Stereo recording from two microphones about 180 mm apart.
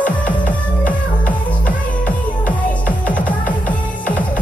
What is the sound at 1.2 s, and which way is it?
Music, 10° left (ahead or behind).